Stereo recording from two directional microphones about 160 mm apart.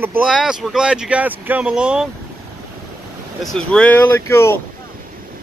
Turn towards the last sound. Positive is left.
turn(degrees=15)  # may be behind; listen again after turning